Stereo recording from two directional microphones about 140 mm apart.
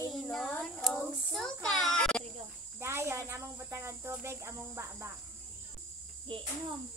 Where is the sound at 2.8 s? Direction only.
20° right (ahead or behind).